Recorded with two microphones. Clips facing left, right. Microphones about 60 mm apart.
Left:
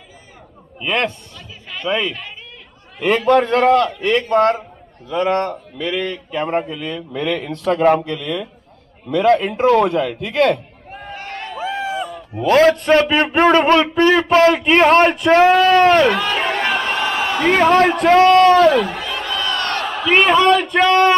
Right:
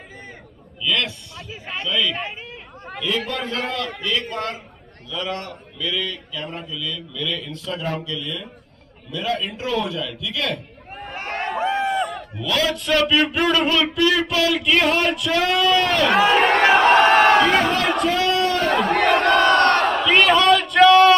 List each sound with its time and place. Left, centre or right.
0.7 s speech: left
3.3 s a man's voice: left
11.1 s a sound: right
11.6 s a sound: centre
12.0 s a sound: right
12.4 s speech: left
16.1 s speech: centre
16.3 s crowd: right
17.6 s speech: left
18.7 s crowd: right
20.1 s battle cry: centre